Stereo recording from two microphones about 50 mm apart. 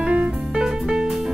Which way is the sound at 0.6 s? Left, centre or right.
Centre.